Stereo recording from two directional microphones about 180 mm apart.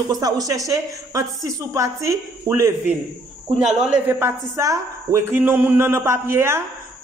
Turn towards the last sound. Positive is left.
turn(degrees=-15)  # may be behind; listen again after turning